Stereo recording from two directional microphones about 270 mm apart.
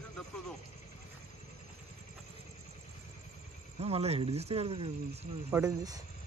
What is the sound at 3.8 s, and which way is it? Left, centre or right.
Speech, right.